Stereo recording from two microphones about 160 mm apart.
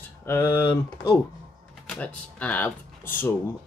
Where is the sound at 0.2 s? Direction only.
15° left (ahead or behind).